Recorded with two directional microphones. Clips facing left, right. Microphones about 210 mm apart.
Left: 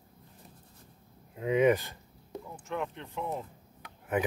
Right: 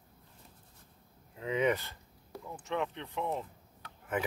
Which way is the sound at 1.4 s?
15° left (ahead or behind).